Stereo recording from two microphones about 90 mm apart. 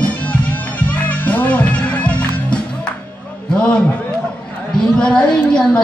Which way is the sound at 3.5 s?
10° left (ahead or behind).